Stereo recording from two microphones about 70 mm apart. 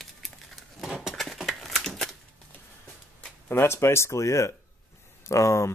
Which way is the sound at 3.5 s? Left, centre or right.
Left.